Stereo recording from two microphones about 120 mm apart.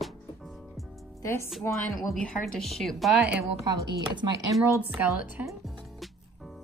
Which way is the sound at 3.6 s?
35° right (ahead or behind).